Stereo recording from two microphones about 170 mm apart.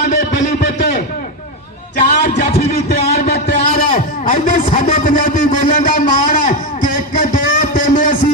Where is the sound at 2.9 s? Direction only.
60° left (ahead or behind).